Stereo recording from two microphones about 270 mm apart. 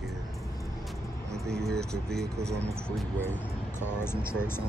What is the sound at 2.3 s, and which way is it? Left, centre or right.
Speech, centre.